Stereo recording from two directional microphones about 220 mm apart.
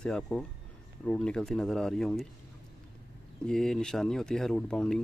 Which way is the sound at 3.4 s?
Centre (ahead or behind).